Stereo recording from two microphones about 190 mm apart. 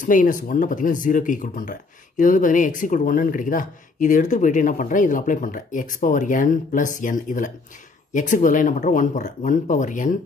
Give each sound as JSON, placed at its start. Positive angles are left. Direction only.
{"t": 0.0, "sound": "speech", "side_deg": 40}